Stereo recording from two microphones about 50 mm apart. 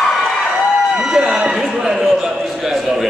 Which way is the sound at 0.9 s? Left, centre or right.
Centre.